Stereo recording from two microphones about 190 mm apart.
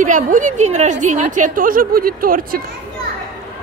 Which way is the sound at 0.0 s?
40° right (ahead or behind).